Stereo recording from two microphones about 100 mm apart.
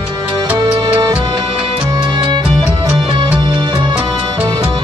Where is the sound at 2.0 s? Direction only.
50° right (ahead or behind).